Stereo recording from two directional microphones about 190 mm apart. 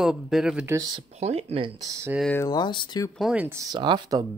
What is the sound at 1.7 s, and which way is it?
Speech, 15° right (ahead or behind).